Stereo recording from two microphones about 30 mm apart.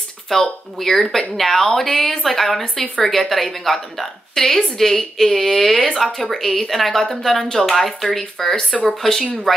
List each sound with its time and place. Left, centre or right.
0.3 s a woman's voice: centre
2.6 s a woman's voice: centre
3.1 s a woman's voice: centre